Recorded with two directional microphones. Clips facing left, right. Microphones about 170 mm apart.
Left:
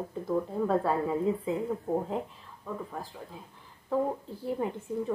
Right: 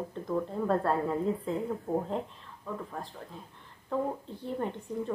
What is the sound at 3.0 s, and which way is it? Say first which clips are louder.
A woman's voice: even; 5° left (ahead or behind).